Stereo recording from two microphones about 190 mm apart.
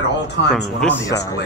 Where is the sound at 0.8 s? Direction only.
5° left (ahead or behind).